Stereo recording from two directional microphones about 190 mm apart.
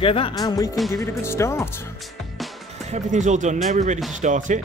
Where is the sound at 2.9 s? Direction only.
40° right (ahead or behind).